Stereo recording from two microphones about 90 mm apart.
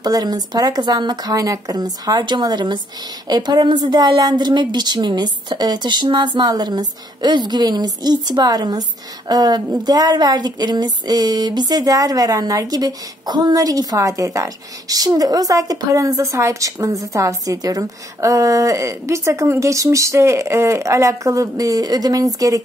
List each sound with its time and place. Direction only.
0.0 s a woman's voice: 50° right (ahead or behind)
2.0 s a woman's voice: 55° right (ahead or behind)
9.8 s a sound: 50° right (ahead or behind)